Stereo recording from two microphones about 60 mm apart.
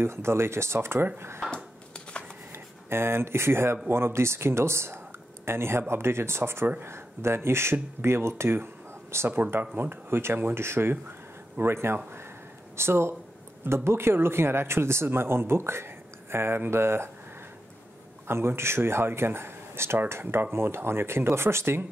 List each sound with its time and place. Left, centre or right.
0.0 s speech: right
2.9 s speech: right
18.2 s speech: right